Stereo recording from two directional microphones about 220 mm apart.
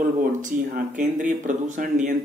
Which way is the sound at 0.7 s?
35° right (ahead or behind).